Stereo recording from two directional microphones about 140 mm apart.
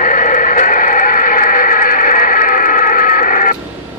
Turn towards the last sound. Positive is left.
turn(degrees=70)  # may be behind; listen again after turning